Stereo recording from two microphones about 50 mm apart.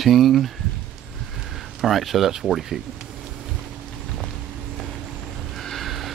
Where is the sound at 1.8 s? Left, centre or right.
Centre.